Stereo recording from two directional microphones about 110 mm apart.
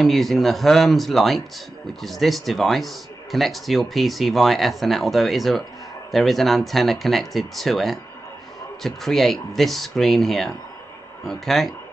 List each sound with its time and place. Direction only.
0.0 s speech: centre (ahead or behind)